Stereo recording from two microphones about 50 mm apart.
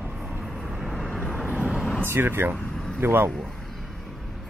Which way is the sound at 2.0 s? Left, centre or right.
Right.